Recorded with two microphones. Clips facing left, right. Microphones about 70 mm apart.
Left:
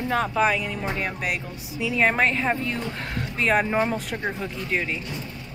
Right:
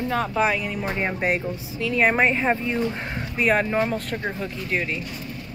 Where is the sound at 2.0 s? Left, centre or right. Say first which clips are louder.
Right 2 dB; centre.